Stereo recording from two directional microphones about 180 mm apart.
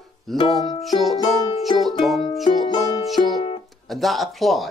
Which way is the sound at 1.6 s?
Centre (ahead or behind).